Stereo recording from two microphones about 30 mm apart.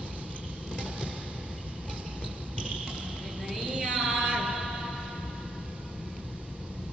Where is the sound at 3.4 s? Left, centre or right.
Centre.